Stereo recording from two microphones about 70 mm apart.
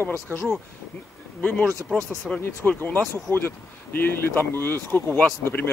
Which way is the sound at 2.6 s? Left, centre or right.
Left.